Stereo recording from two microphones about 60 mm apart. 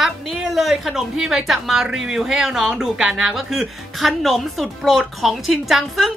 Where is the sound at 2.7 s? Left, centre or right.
Centre.